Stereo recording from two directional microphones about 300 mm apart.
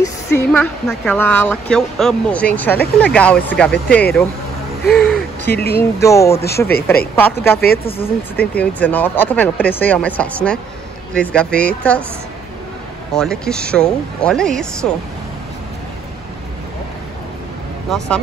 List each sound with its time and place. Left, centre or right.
0.0 s a woman's voice: centre
5.5 s speech: left
5.8 s a woman's voice: centre
13.1 s a woman's voice: centre
17.8 s a woman's voice: centre